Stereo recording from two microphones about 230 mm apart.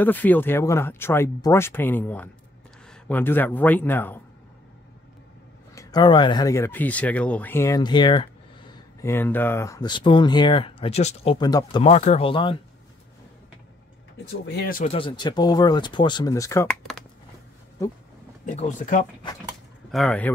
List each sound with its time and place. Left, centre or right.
0.0 s speech: centre
5.8 s speech: centre
11.9 s speech: left
14.4 s speech: left
14.9 s speech: left
17.8 s speech: centre
18.4 s speech: left
19.9 s speech: centre